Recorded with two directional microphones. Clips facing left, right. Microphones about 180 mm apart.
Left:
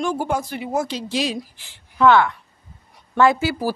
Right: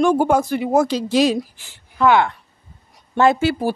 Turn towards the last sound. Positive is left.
turn(degrees=-25)  # may be behind; listen again after turning